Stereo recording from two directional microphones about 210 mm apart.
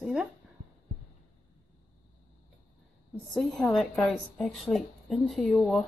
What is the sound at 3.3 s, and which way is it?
A woman's voice, centre (ahead or behind).